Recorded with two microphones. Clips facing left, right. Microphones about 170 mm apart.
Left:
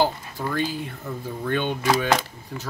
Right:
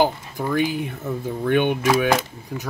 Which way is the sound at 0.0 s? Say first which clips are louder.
Right 3 dB; 15° right (ahead or behind).